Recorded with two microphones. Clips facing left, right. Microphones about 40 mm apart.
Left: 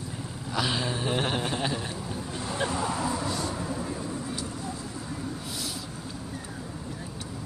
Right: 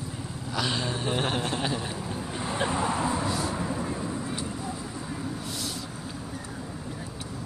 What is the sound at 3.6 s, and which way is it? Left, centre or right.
Vehicle, right.